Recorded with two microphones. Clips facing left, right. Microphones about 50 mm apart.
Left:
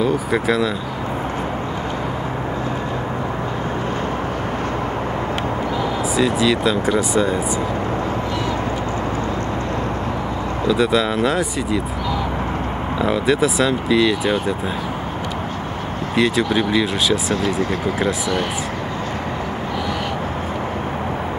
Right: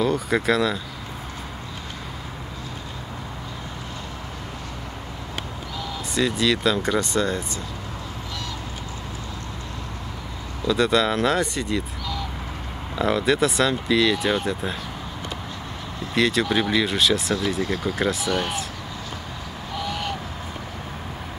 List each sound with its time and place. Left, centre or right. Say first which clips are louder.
0.0 s speech: left 3 dB; centre
6.1 s speech: left 3 dB; centre
10.7 s speech: left 2 dB; centre
13.0 s speech: left 2 dB; centre
16.2 s speech: left 3 dB; centre